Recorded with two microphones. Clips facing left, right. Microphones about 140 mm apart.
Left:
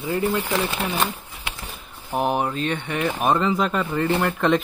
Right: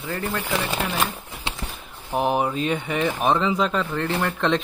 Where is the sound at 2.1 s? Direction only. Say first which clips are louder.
Right 1 dB; centre (ahead or behind).